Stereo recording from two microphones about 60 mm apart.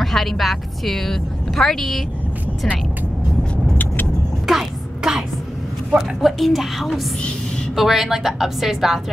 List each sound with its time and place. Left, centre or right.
0.0 s a woman's voice: centre
3.7 s vehicle: left
4.5 s music: centre
5.9 s a woman's voice: centre